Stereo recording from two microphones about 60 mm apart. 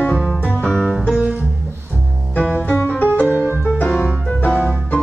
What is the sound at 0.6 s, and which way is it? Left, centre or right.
Music, centre.